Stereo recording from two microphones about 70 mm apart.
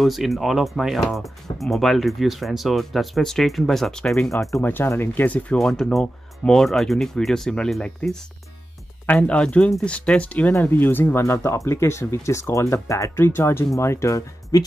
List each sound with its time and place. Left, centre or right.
0.0 s speech: centre
4.8 s speech: left
5.6 s speech: centre
9.0 s speech: centre
11.2 s speech: left
14.5 s speech: left